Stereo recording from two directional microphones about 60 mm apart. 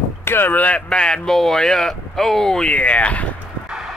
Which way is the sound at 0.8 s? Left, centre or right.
Centre.